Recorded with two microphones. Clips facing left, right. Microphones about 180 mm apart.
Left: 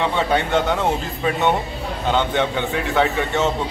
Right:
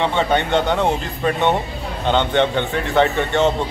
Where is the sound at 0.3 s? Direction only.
5° left (ahead or behind).